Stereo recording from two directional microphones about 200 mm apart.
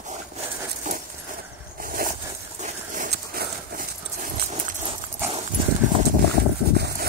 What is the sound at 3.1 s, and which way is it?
Dog, 50° right (ahead or behind).